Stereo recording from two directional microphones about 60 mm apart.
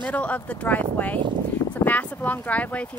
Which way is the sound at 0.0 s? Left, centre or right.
Left.